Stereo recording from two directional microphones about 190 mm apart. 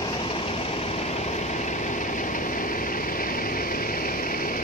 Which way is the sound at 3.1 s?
50° left (ahead or behind).